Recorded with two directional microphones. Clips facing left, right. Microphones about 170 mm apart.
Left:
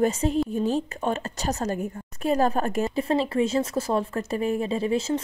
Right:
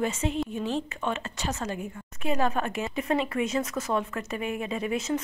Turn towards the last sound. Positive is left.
turn(degrees=30)  # may be behind; listen again after turning